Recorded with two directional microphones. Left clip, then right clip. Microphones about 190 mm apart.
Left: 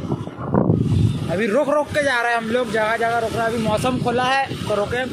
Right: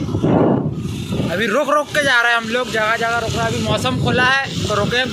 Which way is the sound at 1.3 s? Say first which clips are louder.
Right 2 dB; 5° left (ahead or behind).